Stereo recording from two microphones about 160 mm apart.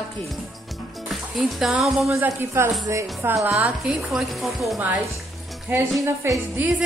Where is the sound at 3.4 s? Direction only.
5° right (ahead or behind).